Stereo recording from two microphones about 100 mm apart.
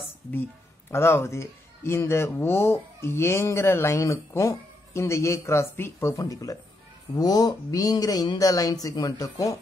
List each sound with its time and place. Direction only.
0.3 s speech: 20° left (ahead or behind)